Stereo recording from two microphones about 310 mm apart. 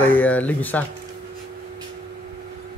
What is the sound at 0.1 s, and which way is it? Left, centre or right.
Speech, centre.